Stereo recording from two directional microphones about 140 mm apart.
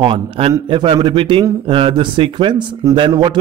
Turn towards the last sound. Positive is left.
turn(degrees=-35)  # may be behind; listen again after turning